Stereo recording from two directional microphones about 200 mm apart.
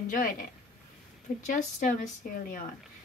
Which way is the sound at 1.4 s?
40° left (ahead or behind).